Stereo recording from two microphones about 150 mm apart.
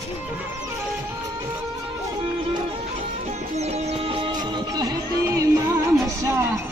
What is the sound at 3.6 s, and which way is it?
Music, 45° right (ahead or behind).